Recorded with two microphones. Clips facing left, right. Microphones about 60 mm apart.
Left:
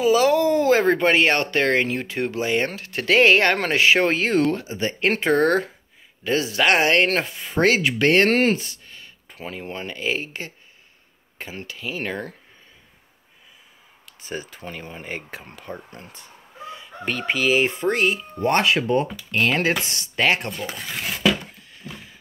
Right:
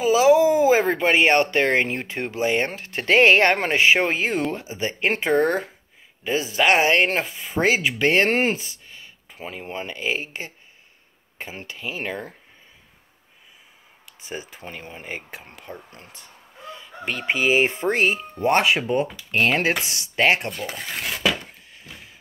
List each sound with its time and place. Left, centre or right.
0.0 s speech: centre
1.1 s speech: right
12.0 s speech: centre
14.2 s speech: centre
16.7 s chicken: centre
17.3 s speech: right
18.4 s speech: centre